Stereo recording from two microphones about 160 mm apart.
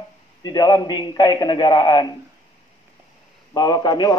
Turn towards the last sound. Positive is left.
turn(degrees=25)  # may be behind; listen again after turning